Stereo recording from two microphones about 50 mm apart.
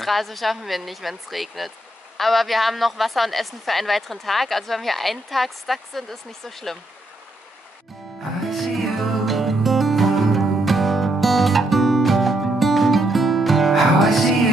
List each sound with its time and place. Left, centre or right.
0.0 s a woman's voice: centre
8.5 s music: centre